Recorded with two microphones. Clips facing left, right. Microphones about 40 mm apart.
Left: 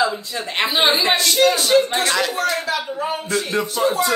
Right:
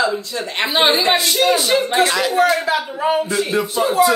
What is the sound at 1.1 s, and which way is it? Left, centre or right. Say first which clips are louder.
Speech: right 1 dB; centre.